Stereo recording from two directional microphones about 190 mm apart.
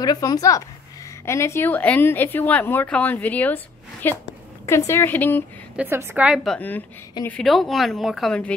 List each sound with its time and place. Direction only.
0.0 s a woman's voice: 20° left (ahead or behind)
5.8 s speech: 10° right (ahead or behind)